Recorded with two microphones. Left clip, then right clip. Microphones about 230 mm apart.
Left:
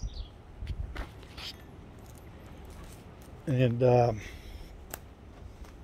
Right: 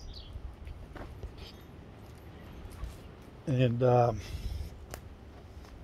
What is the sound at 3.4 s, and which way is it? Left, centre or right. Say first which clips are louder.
Speech: left 2 dB; centre.